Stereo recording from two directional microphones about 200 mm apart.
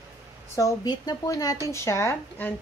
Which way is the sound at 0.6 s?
20° left (ahead or behind).